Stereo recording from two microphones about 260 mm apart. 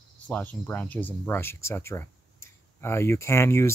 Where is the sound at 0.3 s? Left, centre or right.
Centre.